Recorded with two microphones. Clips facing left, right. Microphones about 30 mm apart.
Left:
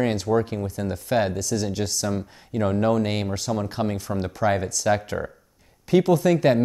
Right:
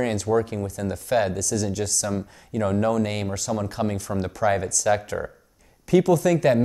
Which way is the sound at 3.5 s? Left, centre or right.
Centre.